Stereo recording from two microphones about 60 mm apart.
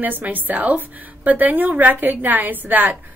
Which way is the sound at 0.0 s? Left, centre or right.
Right.